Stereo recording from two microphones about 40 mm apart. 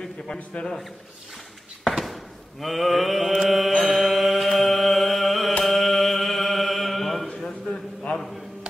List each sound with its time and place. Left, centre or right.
0.0 s a man's voice: centre
1.9 s a sound: centre
2.6 s mantra: centre
3.8 s music: centre
5.6 s mantra: centre
7.2 s a sound: centre